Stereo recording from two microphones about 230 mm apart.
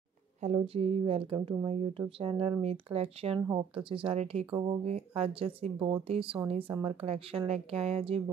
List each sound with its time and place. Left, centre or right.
0.4 s speech: right